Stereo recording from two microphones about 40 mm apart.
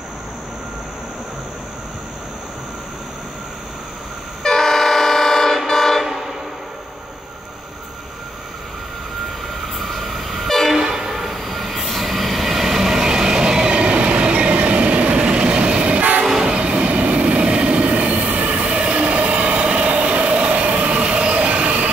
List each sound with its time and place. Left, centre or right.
4.4 s train: centre
6.0 s train: centre
9.8 s train: centre
10.8 s train: centre; by 21.8 s right